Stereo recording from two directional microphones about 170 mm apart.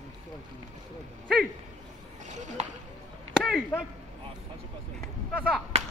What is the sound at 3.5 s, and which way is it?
Chop, centre (ahead or behind).